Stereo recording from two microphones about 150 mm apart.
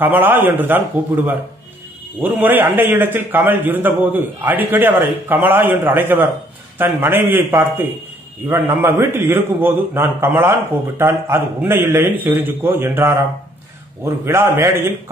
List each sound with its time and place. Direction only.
0.0 s a man's voice: 15° right (ahead or behind)